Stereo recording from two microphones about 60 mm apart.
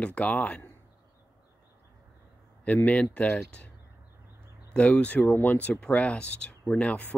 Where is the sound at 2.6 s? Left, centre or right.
Left.